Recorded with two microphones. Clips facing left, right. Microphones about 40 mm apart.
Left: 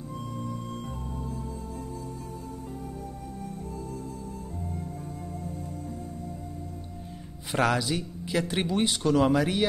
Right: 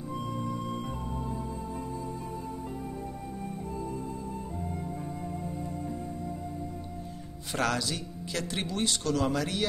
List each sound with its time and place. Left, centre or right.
0.4 s music: right
7.5 s speech: centre